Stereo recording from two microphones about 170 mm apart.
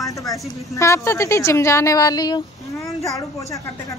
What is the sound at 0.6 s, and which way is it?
A woman's voice, 20° left (ahead or behind).